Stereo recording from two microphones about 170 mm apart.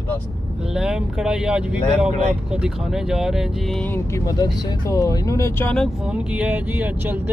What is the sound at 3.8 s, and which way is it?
Speech, 15° left (ahead or behind).